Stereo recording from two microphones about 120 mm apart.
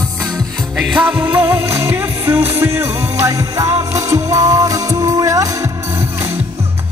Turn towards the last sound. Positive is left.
turn(degrees=-25)  # may be behind; listen again after turning